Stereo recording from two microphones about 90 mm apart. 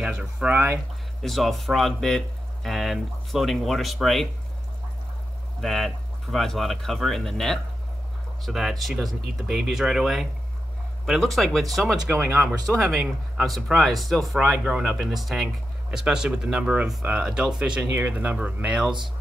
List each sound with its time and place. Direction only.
0.0 s speech: 10° right (ahead or behind)
1.2 s speech: centre (ahead or behind)
5.6 s speech: centre (ahead or behind)
12.1 s speech: 25° right (ahead or behind)
12.4 s speech: 5° right (ahead or behind)